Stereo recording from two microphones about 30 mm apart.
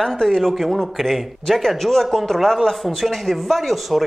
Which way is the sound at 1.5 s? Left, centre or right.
Centre.